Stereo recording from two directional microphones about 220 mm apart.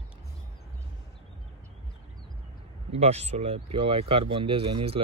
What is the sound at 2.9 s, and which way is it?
Speech, 30° right (ahead or behind).